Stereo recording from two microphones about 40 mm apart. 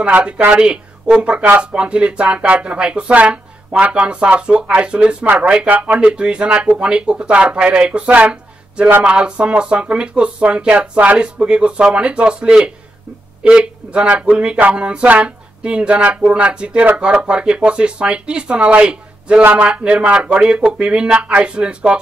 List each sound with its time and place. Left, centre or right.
0.5 s speech: right